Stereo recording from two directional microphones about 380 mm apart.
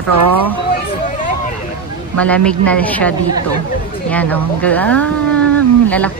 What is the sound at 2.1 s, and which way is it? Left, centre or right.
Speech, centre.